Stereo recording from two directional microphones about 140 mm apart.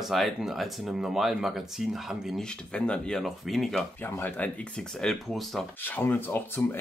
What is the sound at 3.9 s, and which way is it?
Speech, 15° left (ahead or behind).